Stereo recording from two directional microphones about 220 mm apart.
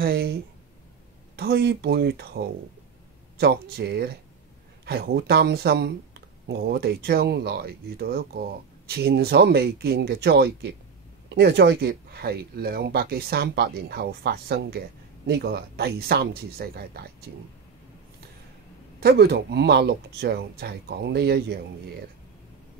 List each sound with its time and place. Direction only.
0.0 s speech: 45° right (ahead or behind)
1.3 s speech: 45° right (ahead or behind)
18.9 s speech: 45° right (ahead or behind)